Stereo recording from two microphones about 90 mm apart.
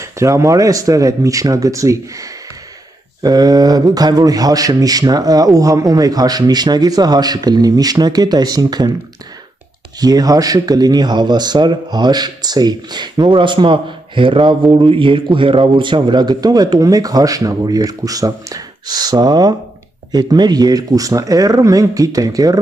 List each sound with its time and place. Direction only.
0.0 s speech: 35° right (ahead or behind)
3.2 s speech: 45° right (ahead or behind)
9.9 s speech: 45° right (ahead or behind)